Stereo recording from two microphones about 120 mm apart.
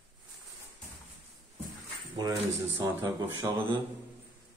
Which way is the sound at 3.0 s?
30° right (ahead or behind).